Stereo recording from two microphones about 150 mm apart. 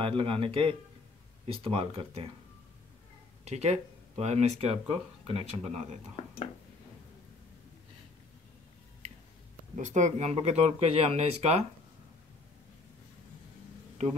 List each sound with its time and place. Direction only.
0.0 s speech: 35° right (ahead or behind)
3.4 s speech: 45° right (ahead or behind)
9.8 s speech: 55° right (ahead or behind)